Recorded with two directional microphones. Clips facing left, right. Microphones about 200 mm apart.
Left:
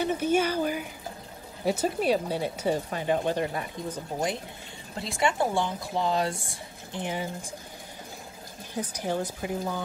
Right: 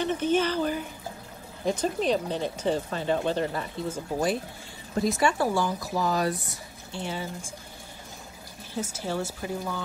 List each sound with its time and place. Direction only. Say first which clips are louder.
0.0 s speech: even; 10° left (ahead or behind)
4.9 s speech: right 3 dB; 25° left (ahead or behind)
8.9 s speech: left 3 dB; 15° left (ahead or behind)